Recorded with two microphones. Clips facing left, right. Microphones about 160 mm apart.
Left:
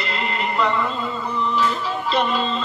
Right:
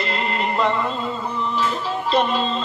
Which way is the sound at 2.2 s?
35° right (ahead or behind).